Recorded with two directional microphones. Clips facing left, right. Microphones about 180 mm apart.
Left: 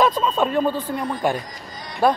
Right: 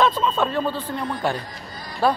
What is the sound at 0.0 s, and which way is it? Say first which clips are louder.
Speech: left 1 dB; 10° left (ahead or behind).